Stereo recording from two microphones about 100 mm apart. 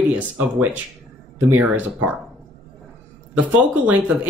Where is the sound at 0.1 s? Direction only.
15° right (ahead or behind).